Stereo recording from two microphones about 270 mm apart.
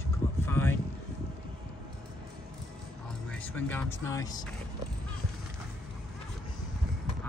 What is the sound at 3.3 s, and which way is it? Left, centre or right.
Speech, centre.